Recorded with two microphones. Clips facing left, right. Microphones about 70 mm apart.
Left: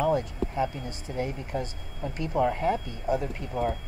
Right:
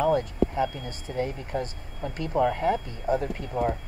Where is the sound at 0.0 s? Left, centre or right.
Right.